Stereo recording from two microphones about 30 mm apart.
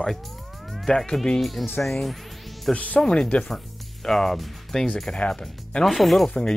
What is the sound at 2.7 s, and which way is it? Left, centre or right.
Speech, left.